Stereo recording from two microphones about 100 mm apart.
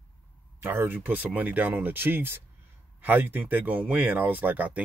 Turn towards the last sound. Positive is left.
turn(degrees=-15)  # may be behind; listen again after turning